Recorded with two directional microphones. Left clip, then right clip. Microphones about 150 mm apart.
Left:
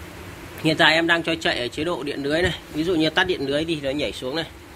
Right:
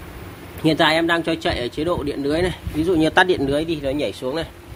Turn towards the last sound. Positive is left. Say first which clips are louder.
# right 2 dB
turn(degrees=-15)  # may be behind; listen again after turning